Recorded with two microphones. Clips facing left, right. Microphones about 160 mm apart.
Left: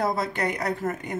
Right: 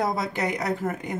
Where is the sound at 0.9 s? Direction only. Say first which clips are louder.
Even; 10° right (ahead or behind).